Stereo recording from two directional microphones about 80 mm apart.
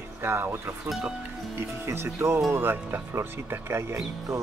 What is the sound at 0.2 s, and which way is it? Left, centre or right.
Speech, right.